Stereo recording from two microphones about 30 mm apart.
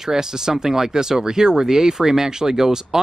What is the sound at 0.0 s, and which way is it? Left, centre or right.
Speech, centre.